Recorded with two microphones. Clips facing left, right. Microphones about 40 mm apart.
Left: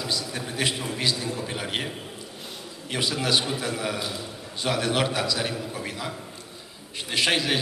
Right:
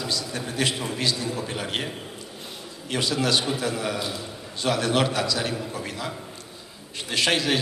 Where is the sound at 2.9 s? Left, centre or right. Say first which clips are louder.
Right 1 dB; centre.